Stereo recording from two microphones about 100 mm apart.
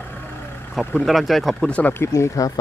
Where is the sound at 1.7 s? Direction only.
20° left (ahead or behind).